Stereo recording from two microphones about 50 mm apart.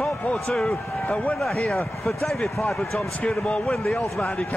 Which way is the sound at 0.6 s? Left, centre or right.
Left.